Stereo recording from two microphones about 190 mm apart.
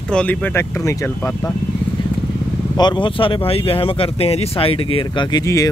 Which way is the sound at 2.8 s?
25° left (ahead or behind).